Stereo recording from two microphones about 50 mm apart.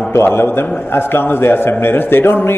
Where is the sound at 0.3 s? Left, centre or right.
Left.